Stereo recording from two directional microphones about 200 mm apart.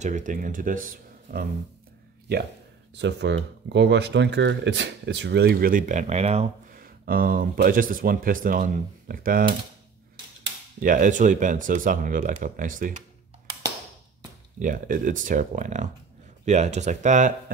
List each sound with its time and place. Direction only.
0.0 s speech: 40° right (ahead or behind)
3.0 s speech: 60° right (ahead or behind); by 6.5 s 30° right (ahead or behind)
6.8 s speech: 45° right (ahead or behind)
10.8 s speech: 40° right (ahead or behind)
14.6 s speech: 40° right (ahead or behind)